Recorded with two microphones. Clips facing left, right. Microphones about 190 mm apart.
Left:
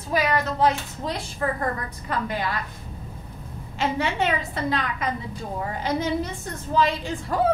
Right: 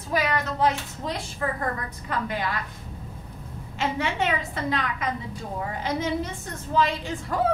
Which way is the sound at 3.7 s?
35° left (ahead or behind).